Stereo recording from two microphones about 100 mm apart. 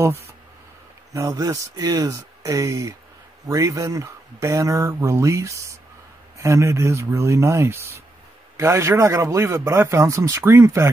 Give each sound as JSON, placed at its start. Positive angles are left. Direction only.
{"t": 1.1, "sound": "speech", "side_deg": -35}